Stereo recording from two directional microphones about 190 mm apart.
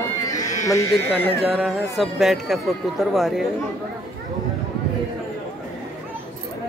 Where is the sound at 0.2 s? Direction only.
15° left (ahead or behind).